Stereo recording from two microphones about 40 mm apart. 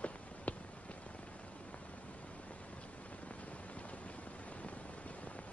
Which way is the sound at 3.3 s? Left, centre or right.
Left.